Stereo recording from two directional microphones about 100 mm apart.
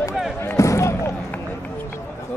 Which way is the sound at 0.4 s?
30° left (ahead or behind).